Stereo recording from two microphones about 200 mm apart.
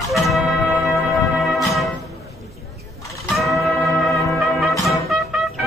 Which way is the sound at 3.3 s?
Centre (ahead or behind).